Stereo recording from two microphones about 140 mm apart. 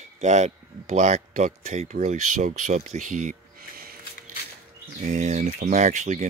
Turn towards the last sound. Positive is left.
turn(degrees=-60)  # may be behind; listen again after turning